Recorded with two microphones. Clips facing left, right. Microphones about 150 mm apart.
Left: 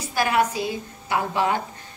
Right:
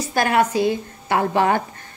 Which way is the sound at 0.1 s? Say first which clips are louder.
Right 3 dB; 55° right (ahead or behind).